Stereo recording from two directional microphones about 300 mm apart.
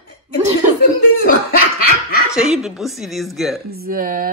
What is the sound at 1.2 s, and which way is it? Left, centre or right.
Speech, left.